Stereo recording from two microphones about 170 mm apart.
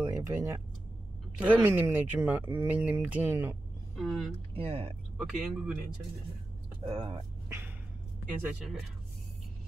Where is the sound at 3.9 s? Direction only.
Centre (ahead or behind).